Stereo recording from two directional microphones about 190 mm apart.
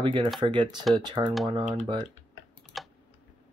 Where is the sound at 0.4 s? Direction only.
25° right (ahead or behind).